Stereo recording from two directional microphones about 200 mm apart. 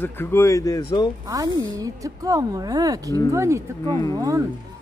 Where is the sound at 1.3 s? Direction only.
15° right (ahead or behind).